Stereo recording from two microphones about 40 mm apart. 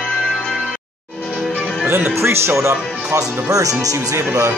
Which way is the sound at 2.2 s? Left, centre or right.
Right.